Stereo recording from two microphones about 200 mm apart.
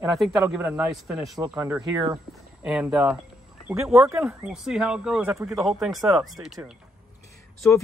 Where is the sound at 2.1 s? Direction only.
5° right (ahead or behind).